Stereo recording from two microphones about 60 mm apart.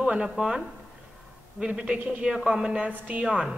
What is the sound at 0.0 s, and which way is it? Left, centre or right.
Speech, centre.